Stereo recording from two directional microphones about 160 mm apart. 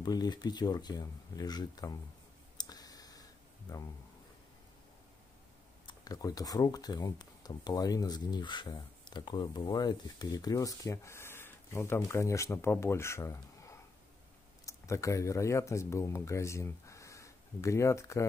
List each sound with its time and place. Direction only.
0.0 s speech: 25° left (ahead or behind)
2.5 s clicking: 25° left (ahead or behind)
3.7 s speech: 25° left (ahead or behind)
5.9 s speech: 25° left (ahead or behind)